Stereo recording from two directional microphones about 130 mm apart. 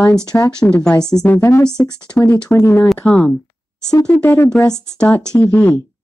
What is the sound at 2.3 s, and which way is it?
Speech, 20° left (ahead or behind).